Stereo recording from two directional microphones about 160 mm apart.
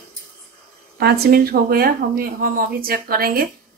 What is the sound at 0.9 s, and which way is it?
Speech, 85° right.